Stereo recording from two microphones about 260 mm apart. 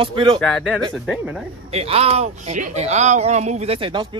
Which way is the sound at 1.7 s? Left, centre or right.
Right.